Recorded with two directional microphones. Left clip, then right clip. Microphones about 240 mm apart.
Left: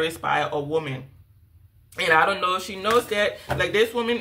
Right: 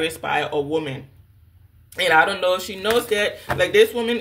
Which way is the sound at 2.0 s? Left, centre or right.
Centre.